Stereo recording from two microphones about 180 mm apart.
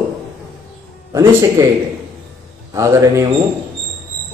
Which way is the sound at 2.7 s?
15° right (ahead or behind).